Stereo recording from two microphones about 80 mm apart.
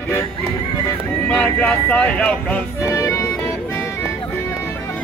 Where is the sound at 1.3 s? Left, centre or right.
Centre.